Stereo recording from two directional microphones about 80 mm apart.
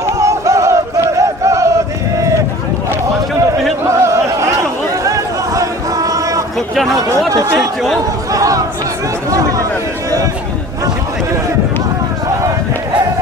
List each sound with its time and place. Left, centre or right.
0.2 s crowd: right
4.0 s chatter: right
7.5 s speech: centre
8.3 s chatter: right
9.3 s speech: right